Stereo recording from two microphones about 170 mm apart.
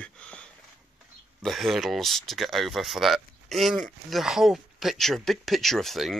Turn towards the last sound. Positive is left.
turn(degrees=0)  # may be behind; listen again after turning